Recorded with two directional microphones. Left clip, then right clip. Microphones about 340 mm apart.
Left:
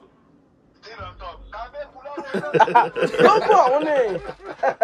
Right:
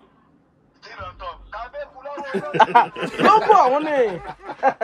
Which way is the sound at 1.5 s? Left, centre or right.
Centre.